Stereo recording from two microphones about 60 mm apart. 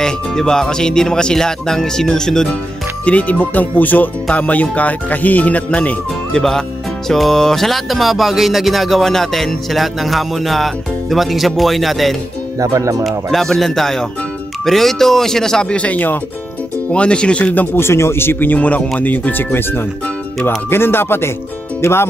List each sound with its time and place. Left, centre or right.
0.0 s speech: centre
3.1 s speech: left
7.1 s music: centre
12.5 s speech: right
13.0 s music: centre
14.6 s speech: centre
15.7 s speech: left
17.7 s speech: left